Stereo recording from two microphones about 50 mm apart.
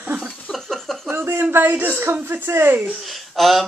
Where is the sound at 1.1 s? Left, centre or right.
Right.